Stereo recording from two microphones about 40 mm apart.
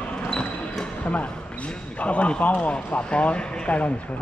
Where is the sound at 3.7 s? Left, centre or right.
Left.